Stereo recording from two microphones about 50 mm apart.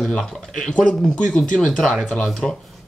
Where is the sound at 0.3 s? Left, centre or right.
Centre.